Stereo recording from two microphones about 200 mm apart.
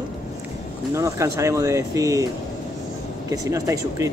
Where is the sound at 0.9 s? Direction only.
15° right (ahead or behind).